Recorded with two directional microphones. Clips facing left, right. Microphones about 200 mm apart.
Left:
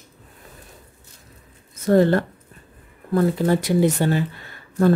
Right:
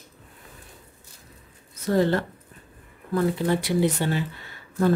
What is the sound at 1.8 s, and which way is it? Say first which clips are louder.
Speech: left 5 dB; 50° left (ahead or behind).